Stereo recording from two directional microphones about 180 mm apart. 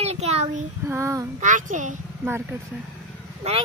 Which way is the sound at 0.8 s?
15° right (ahead or behind).